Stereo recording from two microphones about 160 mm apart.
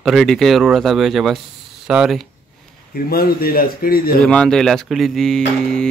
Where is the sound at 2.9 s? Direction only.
70° left (ahead or behind).